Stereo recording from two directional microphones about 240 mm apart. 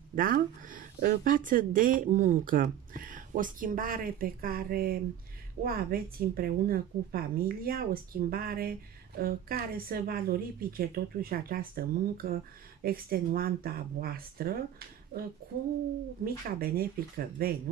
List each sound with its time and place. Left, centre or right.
0.1 s a woman's voice: right
16.3 s a woman's voice: right